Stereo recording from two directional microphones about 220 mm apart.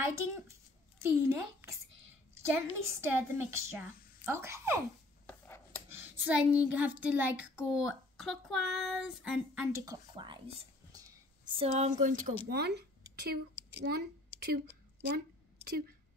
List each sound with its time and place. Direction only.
1.0 s a child's voice: 10° right (ahead or behind)
5.9 s a woman's voice: 10° right (ahead or behind)
10.9 s a sound: 15° right (ahead or behind); by 12.4 s 35° right (ahead or behind)
12.4 s a woman's voice: 45° right (ahead or behind)